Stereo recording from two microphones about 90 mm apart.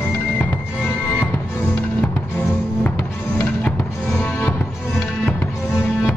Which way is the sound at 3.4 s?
15° left (ahead or behind).